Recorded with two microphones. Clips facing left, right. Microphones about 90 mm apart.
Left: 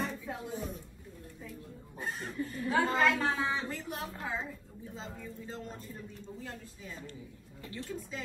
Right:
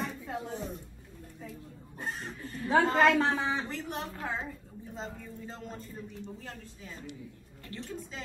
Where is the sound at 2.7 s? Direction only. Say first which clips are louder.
Right 5 dB; 25° right (ahead or behind).